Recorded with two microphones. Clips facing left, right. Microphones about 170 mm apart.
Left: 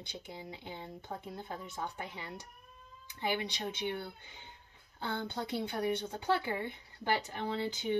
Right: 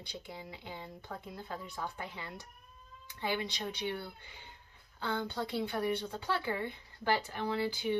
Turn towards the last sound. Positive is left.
turn(degrees=20)  # may be behind; listen again after turning